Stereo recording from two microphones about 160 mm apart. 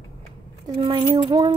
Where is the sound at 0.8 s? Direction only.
30° right (ahead or behind).